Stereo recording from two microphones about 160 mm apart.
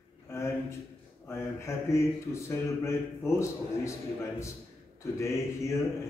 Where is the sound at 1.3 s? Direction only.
15° left (ahead or behind).